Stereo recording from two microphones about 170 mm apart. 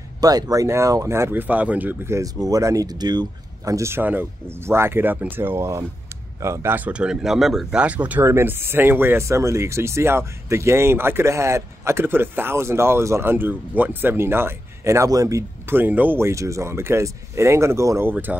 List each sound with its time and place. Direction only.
0.2 s speech: 20° right (ahead or behind)